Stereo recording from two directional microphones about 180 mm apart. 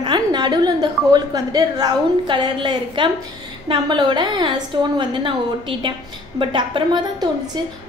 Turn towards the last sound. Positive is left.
turn(degrees=-25)  # may be behind; listen again after turning